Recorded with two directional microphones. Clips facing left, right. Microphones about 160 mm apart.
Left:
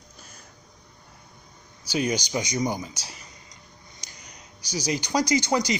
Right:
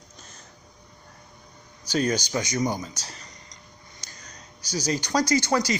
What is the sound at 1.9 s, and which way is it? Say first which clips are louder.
Speech: right 1 dB; 10° left (ahead or behind).